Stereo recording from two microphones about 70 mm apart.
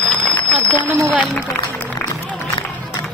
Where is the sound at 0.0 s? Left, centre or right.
Centre.